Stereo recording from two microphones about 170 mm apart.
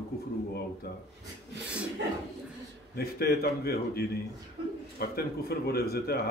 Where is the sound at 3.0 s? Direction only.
65° left (ahead or behind).